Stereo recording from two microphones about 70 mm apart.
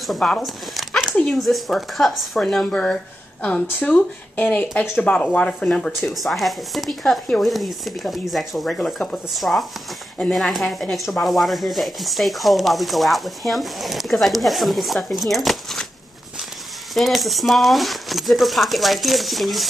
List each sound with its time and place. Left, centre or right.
0.4 s a sound: centre
1.1 s speech: centre
1.4 s speech: centre
16.9 s speech: centre